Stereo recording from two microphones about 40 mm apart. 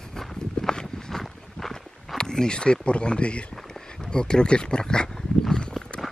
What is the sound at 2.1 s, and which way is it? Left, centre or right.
Speech, centre.